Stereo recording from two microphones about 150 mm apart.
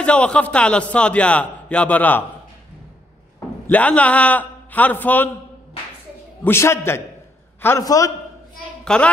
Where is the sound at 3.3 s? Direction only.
10° left (ahead or behind).